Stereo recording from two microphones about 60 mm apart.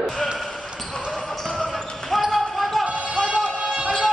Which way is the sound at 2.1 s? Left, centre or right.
Centre.